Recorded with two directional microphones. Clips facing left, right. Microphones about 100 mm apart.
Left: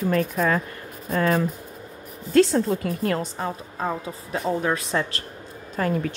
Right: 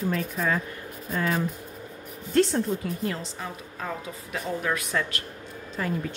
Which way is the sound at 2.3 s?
90° left.